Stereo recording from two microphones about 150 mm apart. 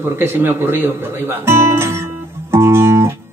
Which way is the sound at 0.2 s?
15° right (ahead or behind).